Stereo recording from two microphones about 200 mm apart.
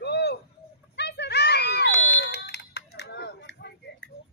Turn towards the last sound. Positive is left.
turn(degrees=60)  # may be behind; listen again after turning